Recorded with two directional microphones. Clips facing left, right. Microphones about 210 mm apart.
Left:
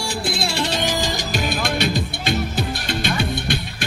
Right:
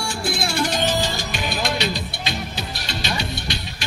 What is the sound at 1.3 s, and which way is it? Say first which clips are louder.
Music: left 4 dB; 50° left (ahead or behind).